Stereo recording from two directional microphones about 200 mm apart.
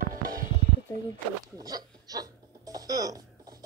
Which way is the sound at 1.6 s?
20° right (ahead or behind).